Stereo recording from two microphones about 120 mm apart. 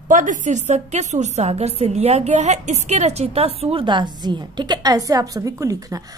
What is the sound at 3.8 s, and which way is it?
A woman's voice, 40° right (ahead or behind).